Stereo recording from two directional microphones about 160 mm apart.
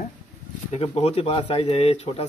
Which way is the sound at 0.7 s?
40° left (ahead or behind).